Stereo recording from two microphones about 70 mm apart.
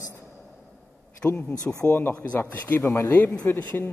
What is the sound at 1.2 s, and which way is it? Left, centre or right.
A man's voice, left.